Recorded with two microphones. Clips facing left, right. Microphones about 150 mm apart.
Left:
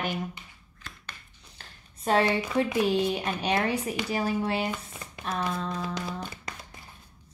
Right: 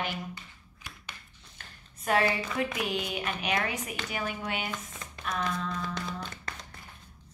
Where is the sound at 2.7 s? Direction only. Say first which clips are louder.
Left 8 dB; 30° left (ahead or behind).